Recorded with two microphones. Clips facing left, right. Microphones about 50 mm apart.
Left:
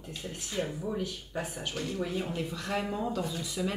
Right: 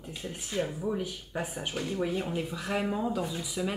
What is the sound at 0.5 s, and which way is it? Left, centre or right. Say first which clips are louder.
Speech: right 3 dB; centre.